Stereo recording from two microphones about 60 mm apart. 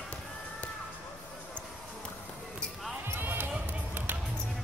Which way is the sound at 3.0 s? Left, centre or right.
Right.